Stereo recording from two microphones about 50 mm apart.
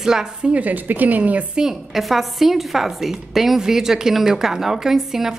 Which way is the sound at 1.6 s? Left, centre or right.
Centre.